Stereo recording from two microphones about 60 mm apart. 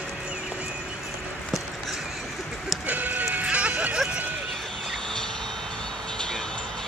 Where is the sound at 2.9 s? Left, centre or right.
Right.